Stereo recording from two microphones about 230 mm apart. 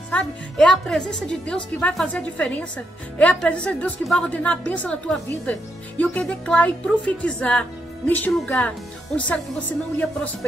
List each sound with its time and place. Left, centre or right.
0.1 s a woman's voice: centre